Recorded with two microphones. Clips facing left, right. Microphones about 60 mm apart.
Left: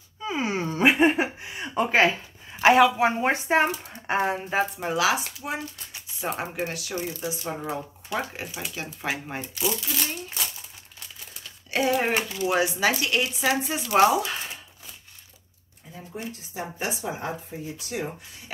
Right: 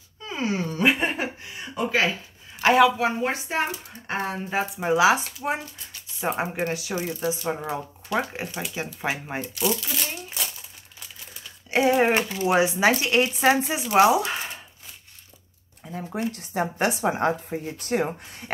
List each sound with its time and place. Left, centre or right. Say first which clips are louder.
0.2 s a sound: even; centre
1.6 s a sound: left 3 dB; left
2.6 s speech: left 2 dB; centre
3.0 s speech: left 2 dB; left
4.1 s speech: left 4 dB; centre
4.5 s speech: left 1 dB; centre
4.8 s speech: right 5 dB; right
9.6 s crumpling: right 2 dB; centre
11.7 s speech: right 4 dB; centre
13.8 s speech: right 1 dB; centre
15.9 s speech: right 7 dB; right